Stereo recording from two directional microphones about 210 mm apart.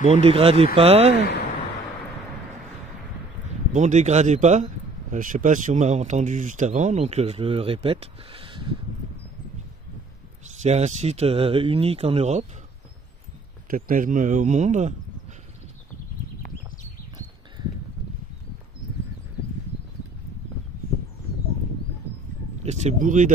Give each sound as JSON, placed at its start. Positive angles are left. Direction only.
{"t": 0.0, "sound": "speech", "side_deg": -30}
{"t": 3.7, "sound": "speech", "side_deg": -35}
{"t": 10.6, "sound": "speech", "side_deg": -35}
{"t": 13.7, "sound": "speech", "side_deg": -40}
{"t": 22.6, "sound": "speech", "side_deg": -30}